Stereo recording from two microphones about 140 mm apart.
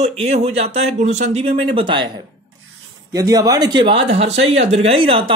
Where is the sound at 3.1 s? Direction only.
25° right (ahead or behind); by 5.3 s 40° right (ahead or behind).